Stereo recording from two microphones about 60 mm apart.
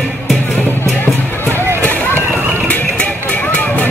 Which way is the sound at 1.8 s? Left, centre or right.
Left.